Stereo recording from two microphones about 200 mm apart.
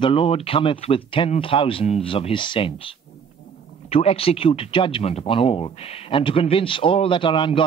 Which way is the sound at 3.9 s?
30° left (ahead or behind).